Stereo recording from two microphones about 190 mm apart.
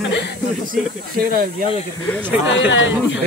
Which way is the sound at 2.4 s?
75° left (ahead or behind).